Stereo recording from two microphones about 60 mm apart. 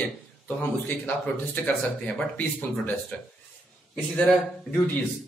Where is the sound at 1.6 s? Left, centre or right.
Left.